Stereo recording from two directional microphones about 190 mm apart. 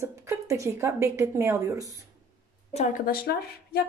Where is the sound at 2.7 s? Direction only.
40° left (ahead or behind).